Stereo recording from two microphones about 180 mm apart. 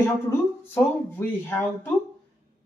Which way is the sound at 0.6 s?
10° left (ahead or behind).